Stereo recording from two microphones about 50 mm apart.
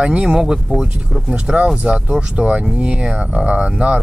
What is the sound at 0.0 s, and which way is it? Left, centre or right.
Speech, centre.